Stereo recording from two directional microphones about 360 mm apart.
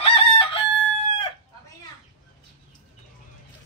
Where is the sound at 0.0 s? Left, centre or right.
Centre.